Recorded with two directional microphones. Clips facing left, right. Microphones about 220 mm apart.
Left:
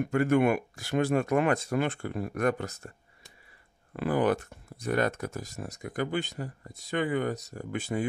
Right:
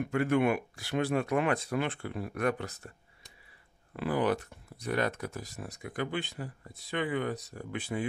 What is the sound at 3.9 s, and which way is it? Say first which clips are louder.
Speech: left 3 dB; 50° left (ahead or behind).